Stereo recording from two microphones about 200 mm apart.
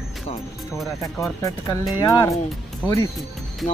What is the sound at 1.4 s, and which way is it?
Speech, 15° left (ahead or behind).